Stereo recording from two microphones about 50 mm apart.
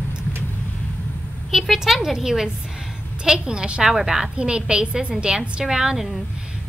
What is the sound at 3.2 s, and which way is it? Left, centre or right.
A woman's voice, centre.